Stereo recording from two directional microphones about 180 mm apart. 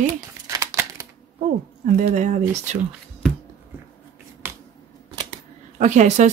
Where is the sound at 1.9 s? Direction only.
45° right (ahead or behind).